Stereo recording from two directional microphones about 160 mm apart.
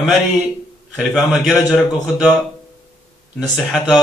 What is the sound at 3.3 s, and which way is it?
Speech, 5° right (ahead or behind).